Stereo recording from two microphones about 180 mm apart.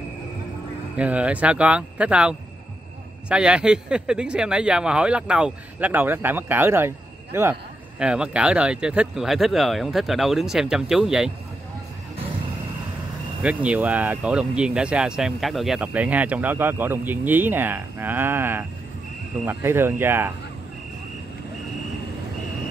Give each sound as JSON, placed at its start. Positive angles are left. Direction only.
{"t": 0.9, "sound": "speech", "side_deg": -5}
{"t": 13.4, "sound": "speech", "side_deg": -5}